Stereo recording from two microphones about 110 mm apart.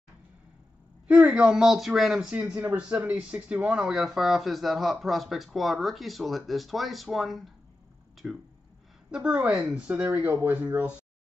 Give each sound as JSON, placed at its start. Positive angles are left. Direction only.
{"t": 1.0, "sound": "speech", "side_deg": -10}
{"t": 10.0, "sound": "speech", "side_deg": -25}